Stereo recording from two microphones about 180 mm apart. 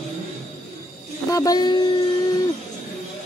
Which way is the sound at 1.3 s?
20° left (ahead or behind).